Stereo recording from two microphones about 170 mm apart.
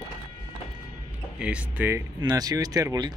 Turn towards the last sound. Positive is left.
turn(degrees=-20)  # may be behind; listen again after turning